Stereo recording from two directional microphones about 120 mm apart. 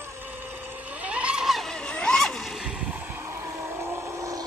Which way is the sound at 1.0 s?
10° right (ahead or behind).